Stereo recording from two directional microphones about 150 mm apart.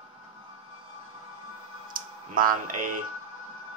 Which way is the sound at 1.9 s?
65° right (ahead or behind).